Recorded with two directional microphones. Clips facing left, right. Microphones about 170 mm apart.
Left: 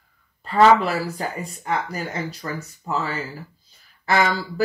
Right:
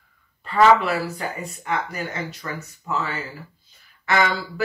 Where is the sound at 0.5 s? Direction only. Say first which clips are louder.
Left 1 dB; 35° left (ahead or behind).